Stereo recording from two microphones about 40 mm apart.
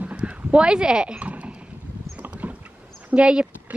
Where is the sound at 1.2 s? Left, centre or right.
Right.